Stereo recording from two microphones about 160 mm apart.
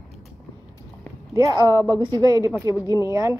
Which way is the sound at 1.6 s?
25° right (ahead or behind).